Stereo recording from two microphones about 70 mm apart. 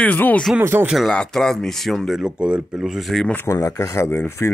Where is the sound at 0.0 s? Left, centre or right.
Left.